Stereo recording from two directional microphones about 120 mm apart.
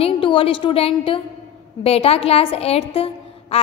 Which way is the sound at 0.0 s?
50° left (ahead or behind).